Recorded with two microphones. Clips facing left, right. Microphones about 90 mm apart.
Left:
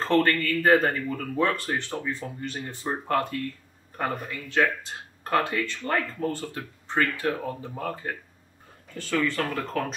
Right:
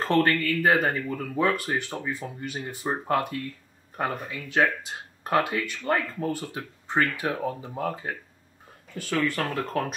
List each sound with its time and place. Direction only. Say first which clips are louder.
0.0 s speech: even; 15° right (ahead or behind)